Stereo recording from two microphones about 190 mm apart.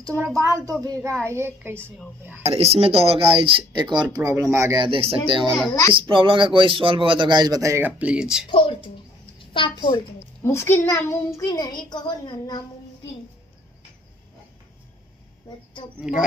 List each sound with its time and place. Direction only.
0.4 s a woman's voice: 15° right (ahead or behind)
2.5 s speech: 30° right (ahead or behind); by 4.8 s 15° right (ahead or behind)
4.8 s speech: 30° right (ahead or behind)
5.4 s a child's voice: centre (ahead or behind)
5.9 s speech: 25° right (ahead or behind); by 8.5 s 5° right (ahead or behind)
8.5 s a child's voice: 30° left (ahead or behind)
10.4 s a child's voice: 15° left (ahead or behind)
16.0 s a child's voice: 5° right (ahead or behind)